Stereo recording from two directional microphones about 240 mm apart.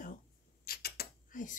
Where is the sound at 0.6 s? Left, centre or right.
Left.